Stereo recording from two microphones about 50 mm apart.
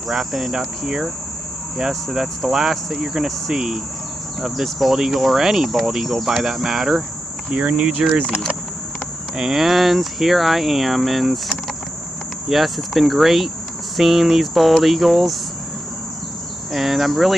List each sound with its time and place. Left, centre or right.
0.1 s speech: centre
7.4 s cricket: right
9.4 s speech: centre
16.7 s speech: centre